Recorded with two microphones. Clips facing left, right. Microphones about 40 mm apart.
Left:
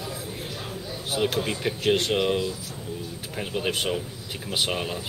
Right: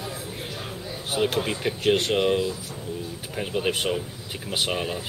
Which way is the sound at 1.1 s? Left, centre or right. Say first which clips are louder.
Right 1 dB; centre.